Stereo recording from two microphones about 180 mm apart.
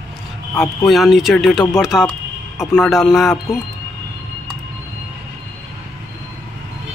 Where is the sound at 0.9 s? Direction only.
Centre (ahead or behind).